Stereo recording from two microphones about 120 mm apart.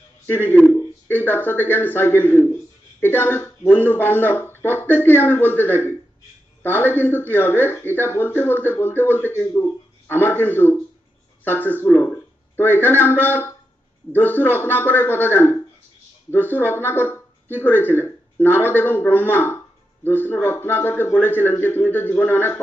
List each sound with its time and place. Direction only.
0.3 s speech: 20° left (ahead or behind)